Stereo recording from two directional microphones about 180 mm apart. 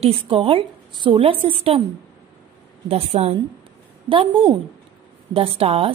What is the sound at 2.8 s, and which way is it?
A woman's voice, 35° right (ahead or behind).